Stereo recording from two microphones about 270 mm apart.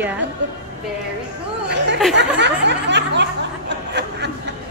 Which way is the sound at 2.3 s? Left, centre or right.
Right.